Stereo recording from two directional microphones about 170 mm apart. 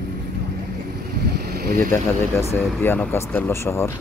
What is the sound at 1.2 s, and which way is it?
Vehicle, 70° right (ahead or behind).